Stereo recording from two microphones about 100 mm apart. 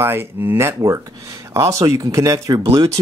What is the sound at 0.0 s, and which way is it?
Speech, 25° right (ahead or behind).